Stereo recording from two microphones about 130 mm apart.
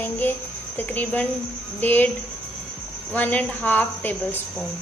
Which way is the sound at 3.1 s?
10° left (ahead or behind).